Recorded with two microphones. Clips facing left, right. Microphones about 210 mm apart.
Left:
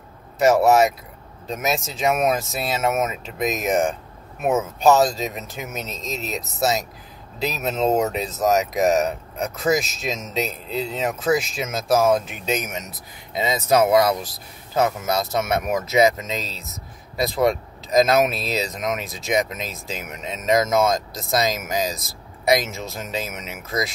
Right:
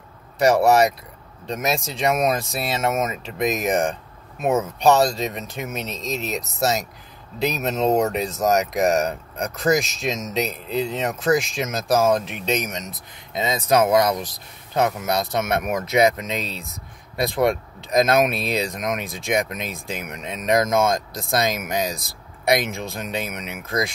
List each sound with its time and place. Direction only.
0.4 s speech: centre (ahead or behind)
16.3 s speech: 55° right (ahead or behind)
17.4 s speech: centre (ahead or behind)
19.6 s speech: 55° right (ahead or behind)
20.1 s speech: 5° left (ahead or behind)